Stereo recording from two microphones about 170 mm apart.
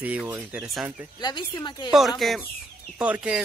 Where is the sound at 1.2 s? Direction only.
25° left (ahead or behind).